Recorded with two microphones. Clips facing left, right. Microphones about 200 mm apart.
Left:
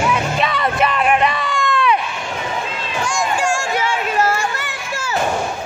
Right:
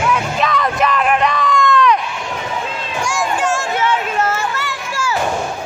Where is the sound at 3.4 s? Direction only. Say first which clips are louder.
Right 1 dB; 10° left (ahead or behind).